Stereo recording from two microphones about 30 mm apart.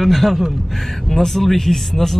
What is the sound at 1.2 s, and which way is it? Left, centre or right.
Speech, centre.